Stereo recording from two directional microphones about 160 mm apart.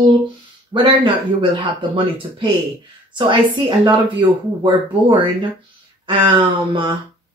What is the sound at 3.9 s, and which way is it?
Speech, 30° right (ahead or behind).